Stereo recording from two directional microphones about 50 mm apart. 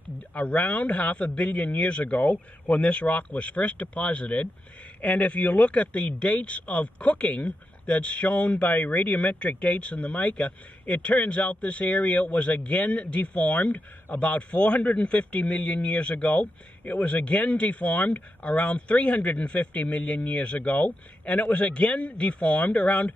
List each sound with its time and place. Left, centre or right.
0.3 s a man's voice: left